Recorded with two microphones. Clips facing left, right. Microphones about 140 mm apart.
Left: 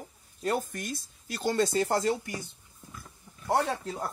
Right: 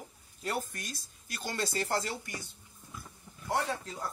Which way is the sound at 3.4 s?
30° left (ahead or behind).